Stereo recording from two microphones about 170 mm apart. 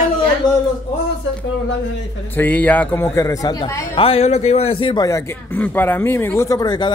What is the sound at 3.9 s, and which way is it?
Speech, 35° left (ahead or behind).